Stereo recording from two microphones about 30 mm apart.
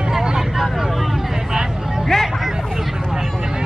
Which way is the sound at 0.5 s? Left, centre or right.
Centre.